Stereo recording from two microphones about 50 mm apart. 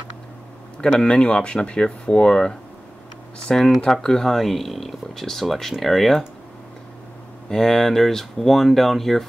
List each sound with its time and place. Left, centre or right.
0.7 s speech: centre
7.4 s speech: centre